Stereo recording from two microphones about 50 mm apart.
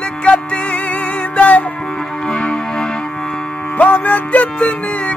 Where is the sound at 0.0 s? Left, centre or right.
Left.